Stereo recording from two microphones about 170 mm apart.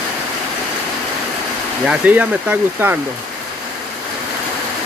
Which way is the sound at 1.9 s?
10° right (ahead or behind).